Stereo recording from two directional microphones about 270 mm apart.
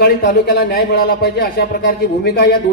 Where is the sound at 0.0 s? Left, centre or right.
Left.